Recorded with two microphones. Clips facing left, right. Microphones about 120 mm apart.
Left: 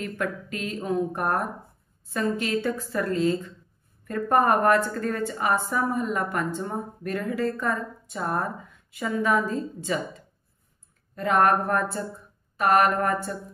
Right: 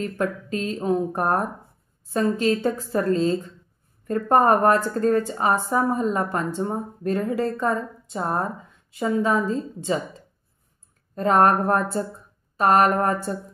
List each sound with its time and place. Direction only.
0.0 s a woman's voice: 30° right (ahead or behind)